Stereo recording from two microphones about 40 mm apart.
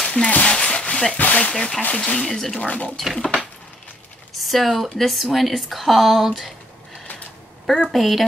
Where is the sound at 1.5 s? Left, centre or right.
Centre.